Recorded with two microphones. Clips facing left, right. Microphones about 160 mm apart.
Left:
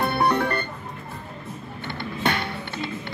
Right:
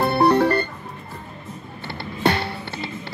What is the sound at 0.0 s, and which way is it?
Music, 30° right (ahead or behind).